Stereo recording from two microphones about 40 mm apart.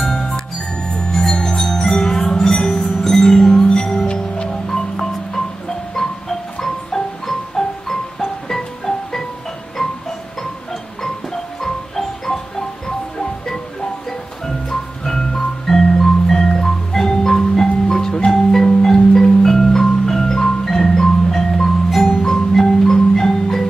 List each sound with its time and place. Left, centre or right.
0.8 s marimba: centre
1.2 s mallet percussion: centre
3.6 s music: centre
4.6 s music: centre
11.6 s music: centre
18.8 s marimba: centre